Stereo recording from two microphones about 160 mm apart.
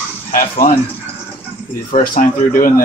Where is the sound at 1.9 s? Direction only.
60° left (ahead or behind).